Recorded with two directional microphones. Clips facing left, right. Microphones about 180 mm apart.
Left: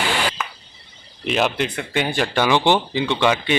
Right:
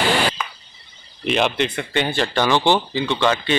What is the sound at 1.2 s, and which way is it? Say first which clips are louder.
Speech: right 1 dB; 5° left (ahead or behind).